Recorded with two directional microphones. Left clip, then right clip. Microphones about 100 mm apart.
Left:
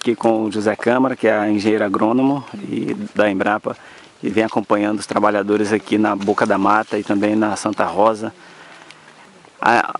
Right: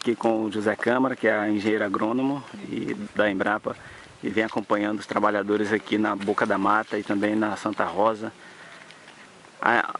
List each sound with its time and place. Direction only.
0.0 s speech: 20° left (ahead or behind)
4.2 s speech: 20° left (ahead or behind)
7.2 s speech: 10° left (ahead or behind)
9.6 s speech: 15° left (ahead or behind)